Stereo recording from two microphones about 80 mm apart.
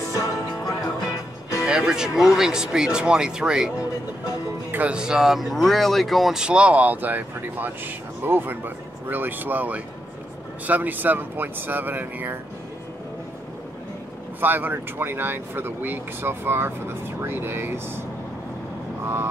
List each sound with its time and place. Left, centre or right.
0.1 s music: left
1.6 s speech: centre
4.6 s speech: right
4.9 s speech: centre
14.4 s speech: right